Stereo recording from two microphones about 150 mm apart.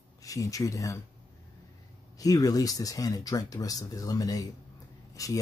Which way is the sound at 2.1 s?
25° left (ahead or behind).